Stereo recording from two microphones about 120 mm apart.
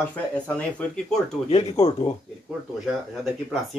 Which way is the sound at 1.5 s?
60° left (ahead or behind).